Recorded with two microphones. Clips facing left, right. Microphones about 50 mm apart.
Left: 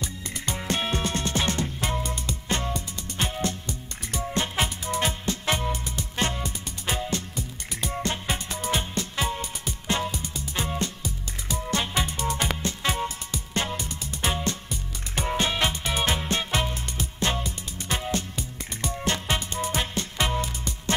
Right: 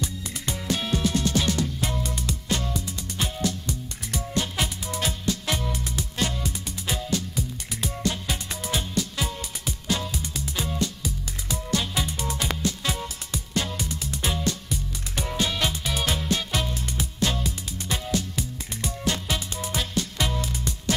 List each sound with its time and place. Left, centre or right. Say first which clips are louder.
0.7 s music: right 2 dB; left
14.2 s music: left 1 dB; left